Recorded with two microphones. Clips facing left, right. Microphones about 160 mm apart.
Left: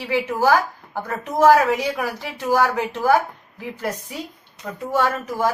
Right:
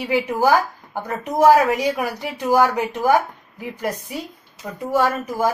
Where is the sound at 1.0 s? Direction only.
15° right (ahead or behind).